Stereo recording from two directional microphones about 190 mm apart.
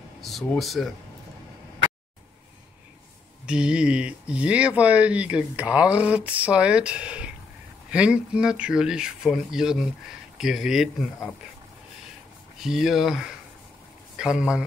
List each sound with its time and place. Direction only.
0.2 s speech: centre (ahead or behind)
3.4 s speech: 5° right (ahead or behind)
12.6 s speech: centre (ahead or behind)